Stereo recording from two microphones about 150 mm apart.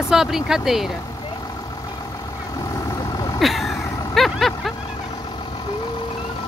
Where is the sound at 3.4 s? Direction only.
Centre (ahead or behind).